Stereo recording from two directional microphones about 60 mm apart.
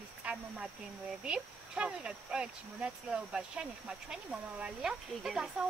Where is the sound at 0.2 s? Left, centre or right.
Centre.